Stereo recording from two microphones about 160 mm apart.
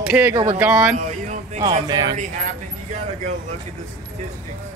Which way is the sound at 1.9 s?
25° right (ahead or behind).